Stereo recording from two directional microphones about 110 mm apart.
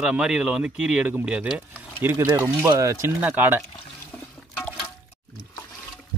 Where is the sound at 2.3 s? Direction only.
25° right (ahead or behind).